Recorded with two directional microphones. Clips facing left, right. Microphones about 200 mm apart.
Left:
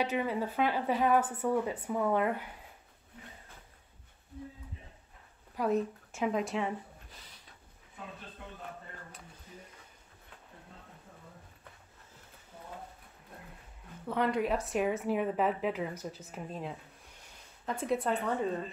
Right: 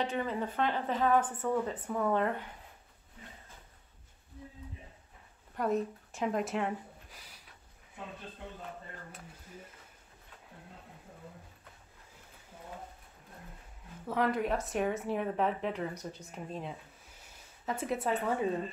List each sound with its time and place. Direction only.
0.0 s speech: 5° left (ahead or behind)
5.6 s speech: centre (ahead or behind)
14.0 s a woman's voice: centre (ahead or behind)